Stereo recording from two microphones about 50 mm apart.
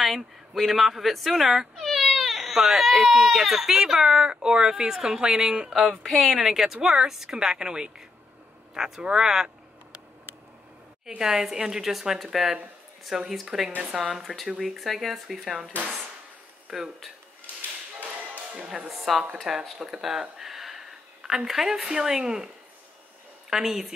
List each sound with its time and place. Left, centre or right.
0.0 s a woman's voice: centre
6.0 s speech: centre
6.4 s a woman's voice: centre
11.1 s a woman's voice: centre
13.7 s speech: right
14.1 s speech: centre
16.7 s a woman's voice: centre
18.9 s a woman's voice: centre
19.8 s a sound: centre
21.5 s a woman's voice: centre
23.5 s a woman's voice: centre